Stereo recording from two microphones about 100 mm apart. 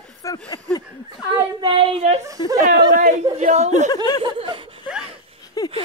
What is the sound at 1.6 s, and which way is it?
Speech, 65° right (ahead or behind).